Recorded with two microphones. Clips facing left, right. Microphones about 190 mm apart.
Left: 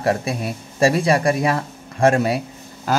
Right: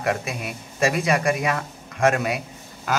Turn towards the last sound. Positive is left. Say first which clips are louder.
# left 4 dB
turn(degrees=35)  # may be behind; listen again after turning